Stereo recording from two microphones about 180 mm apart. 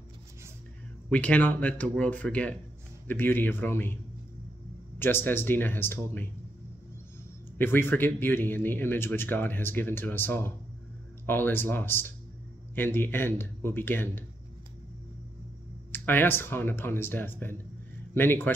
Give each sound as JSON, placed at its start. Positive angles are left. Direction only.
{"t": 1.1, "sound": "speech", "side_deg": 10}
{"t": 7.5, "sound": "speech", "side_deg": 10}
{"t": 15.9, "sound": "speech", "side_deg": 10}